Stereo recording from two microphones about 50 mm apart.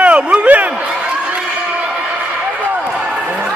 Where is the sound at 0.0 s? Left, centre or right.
Right.